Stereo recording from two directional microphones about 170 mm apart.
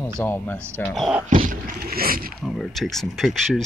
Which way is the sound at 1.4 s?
55° right (ahead or behind).